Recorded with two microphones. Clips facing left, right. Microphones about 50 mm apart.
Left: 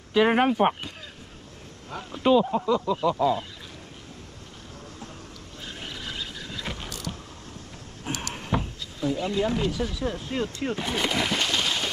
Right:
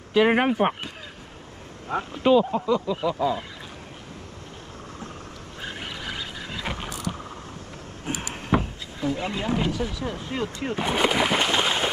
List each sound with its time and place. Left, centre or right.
0.3 s speech: centre
2.1 s speech: centre
5.6 s vehicle: right
9.5 s speech: right